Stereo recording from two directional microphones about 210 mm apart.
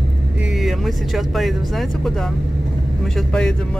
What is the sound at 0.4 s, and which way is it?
Speech, centre (ahead or behind).